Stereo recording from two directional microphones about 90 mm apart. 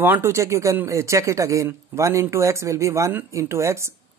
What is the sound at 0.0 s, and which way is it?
Speech, 25° right (ahead or behind).